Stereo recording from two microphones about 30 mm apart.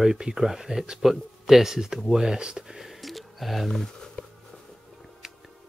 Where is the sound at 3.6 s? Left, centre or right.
Centre.